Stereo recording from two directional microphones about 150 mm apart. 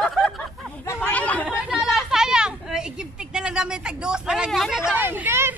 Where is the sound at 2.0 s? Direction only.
5° right (ahead or behind).